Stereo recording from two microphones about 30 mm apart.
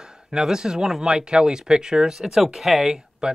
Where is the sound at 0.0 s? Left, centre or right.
Right.